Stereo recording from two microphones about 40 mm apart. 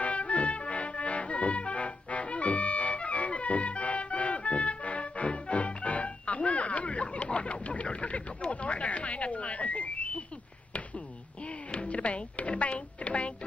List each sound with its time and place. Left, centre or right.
0.0 s music: left
11.9 s music: left